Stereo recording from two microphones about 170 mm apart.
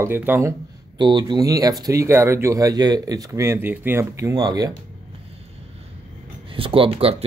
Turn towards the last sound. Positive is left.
turn(degrees=-35)  # may be behind; listen again after turning